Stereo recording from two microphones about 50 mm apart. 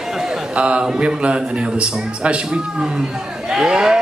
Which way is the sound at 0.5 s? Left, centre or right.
Right.